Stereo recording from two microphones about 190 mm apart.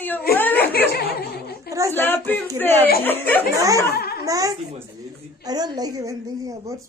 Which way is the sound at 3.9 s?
55° left (ahead or behind).